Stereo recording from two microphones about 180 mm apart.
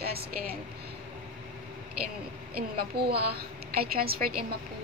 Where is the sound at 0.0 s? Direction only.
60° right (ahead or behind).